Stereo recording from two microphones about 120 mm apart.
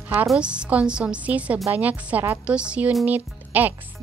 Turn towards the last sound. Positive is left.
turn(degrees=-15)  # may be behind; listen again after turning